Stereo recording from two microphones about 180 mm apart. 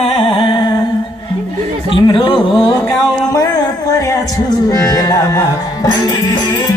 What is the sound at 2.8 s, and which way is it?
Music, 20° left (ahead or behind).